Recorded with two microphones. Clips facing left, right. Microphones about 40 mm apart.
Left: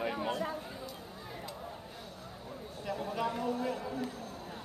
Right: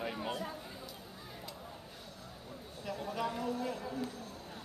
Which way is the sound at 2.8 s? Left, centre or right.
Centre.